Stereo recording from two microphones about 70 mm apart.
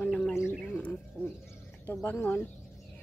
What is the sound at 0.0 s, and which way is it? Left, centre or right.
Bird, centre.